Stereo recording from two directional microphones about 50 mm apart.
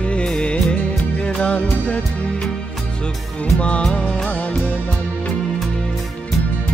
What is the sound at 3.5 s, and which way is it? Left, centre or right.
Music, left.